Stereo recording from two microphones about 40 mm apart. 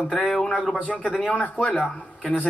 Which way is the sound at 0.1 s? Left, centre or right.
Left.